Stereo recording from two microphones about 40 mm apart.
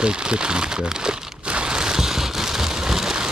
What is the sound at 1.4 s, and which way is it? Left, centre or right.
Crumpling, right.